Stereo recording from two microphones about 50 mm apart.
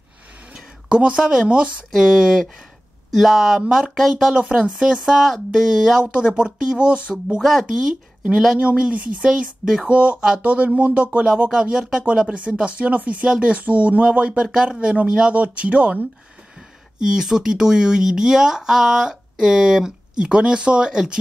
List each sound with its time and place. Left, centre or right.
0.8 s speech: right
1.9 s speech: centre
4.3 s speech: centre
6.1 s speech: centre
7.3 s speech: centre
7.6 s speech: centre
17.0 s speech: centre